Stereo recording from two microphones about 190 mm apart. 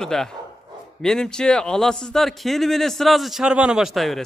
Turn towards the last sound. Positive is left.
turn(degrees=0)  # may be behind; listen again after turning